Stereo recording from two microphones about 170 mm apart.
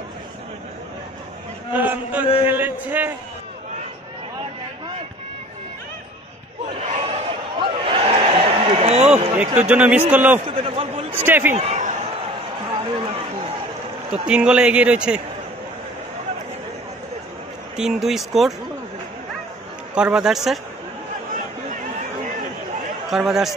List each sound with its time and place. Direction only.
1.7 s a man's voice: 10° right (ahead or behind)
6.9 s a sound: 35° right (ahead or behind)
9.7 s a man's voice: 10° right (ahead or behind)
10.4 s a man's voice: 30° right (ahead or behind)
11.1 s a man's voice: 10° right (ahead or behind)
11.5 s speech: 40° right (ahead or behind)
12.7 s run: 30° right (ahead or behind)
14.2 s a man's voice: 5° right (ahead or behind)
17.7 s a man's voice: centre (ahead or behind)
19.9 s a man's voice: 5° right (ahead or behind)
23.0 s a man's voice: centre (ahead or behind)